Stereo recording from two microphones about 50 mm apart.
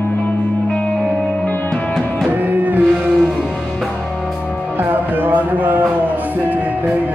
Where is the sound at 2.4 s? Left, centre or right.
Right.